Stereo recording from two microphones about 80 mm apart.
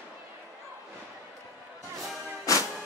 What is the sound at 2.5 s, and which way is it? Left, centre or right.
Music, left.